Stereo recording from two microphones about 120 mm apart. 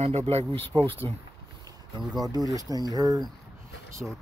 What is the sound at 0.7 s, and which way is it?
Speech, 20° left (ahead or behind).